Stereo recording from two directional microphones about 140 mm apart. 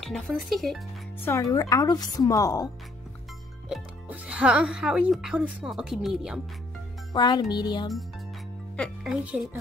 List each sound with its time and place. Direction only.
0.0 s speech: centre (ahead or behind)
1.2 s speech: 20° left (ahead or behind)
3.6 s speech: 5° right (ahead or behind)
7.1 s music: 30° left (ahead or behind)
8.7 s speech: centre (ahead or behind)